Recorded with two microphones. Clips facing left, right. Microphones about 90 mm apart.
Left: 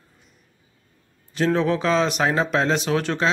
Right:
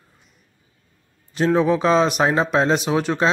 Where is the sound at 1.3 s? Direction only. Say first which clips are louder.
Right 3 dB; 15° right (ahead or behind).